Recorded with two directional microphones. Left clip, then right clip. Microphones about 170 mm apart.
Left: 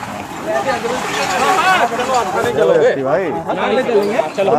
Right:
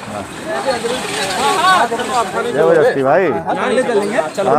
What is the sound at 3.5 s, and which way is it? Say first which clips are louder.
Speech: left 4 dB; 25° right (ahead or behind).